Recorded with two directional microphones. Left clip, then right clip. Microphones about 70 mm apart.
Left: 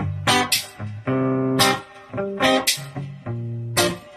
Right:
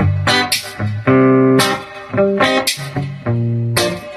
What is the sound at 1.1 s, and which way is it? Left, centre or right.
Music, right.